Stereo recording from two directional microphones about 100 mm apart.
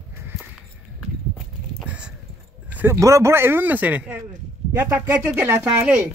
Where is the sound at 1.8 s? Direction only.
10° right (ahead or behind).